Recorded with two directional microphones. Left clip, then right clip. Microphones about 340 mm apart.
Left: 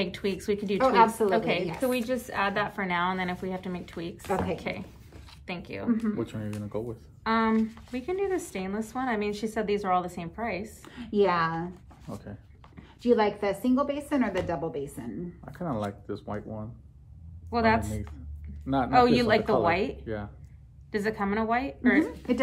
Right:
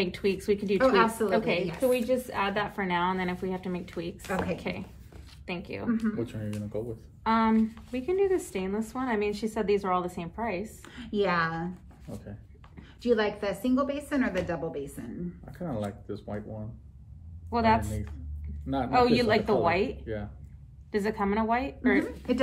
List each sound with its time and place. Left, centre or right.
0.0 s speech: centre
0.7 s a woman's voice: left
1.3 s speech: centre
5.9 s speech: left
7.2 s speech: centre
10.9 s a woman's voice: left
17.5 s speech: centre
22.0 s a woman's voice: left